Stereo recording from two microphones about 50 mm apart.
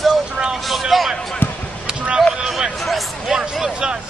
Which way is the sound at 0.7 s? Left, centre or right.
Centre.